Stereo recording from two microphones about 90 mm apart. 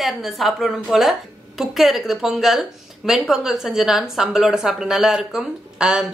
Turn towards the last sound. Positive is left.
turn(degrees=-5)  # may be behind; listen again after turning